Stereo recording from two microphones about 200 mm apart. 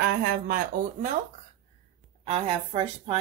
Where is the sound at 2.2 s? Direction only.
30° right (ahead or behind).